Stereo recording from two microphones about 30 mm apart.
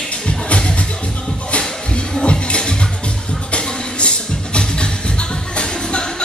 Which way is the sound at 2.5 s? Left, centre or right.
Left.